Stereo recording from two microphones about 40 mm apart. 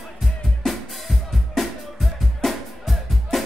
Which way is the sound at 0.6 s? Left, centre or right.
Centre.